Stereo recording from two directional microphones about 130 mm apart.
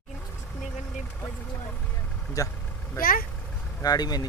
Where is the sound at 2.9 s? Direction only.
90° left.